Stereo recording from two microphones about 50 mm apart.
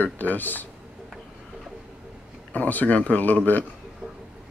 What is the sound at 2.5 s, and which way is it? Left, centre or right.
Speech, left.